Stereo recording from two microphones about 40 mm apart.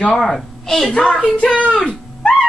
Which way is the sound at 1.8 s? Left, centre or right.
Left.